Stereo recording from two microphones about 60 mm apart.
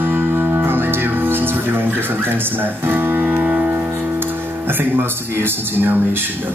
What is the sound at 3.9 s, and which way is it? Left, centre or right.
Speech, right.